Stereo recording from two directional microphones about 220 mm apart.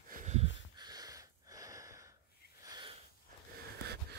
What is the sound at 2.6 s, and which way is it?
Wheeze, 20° right (ahead or behind).